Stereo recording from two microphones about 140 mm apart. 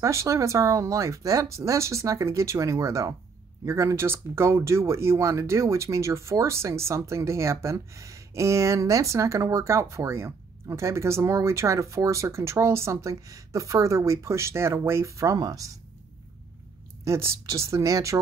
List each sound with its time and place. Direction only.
0.0 s speech: 20° right (ahead or behind)
17.0 s speech: 20° right (ahead or behind)